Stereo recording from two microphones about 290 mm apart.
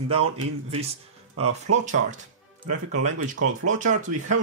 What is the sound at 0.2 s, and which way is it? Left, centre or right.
Speech, right.